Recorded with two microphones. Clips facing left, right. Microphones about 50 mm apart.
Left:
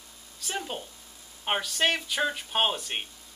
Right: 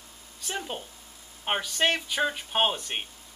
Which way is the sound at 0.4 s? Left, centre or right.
Centre.